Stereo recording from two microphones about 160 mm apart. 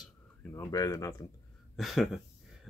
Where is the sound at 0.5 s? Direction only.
20° left (ahead or behind).